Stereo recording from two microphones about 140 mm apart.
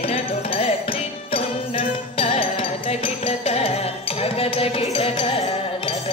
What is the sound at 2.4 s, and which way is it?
Music, 45° left (ahead or behind).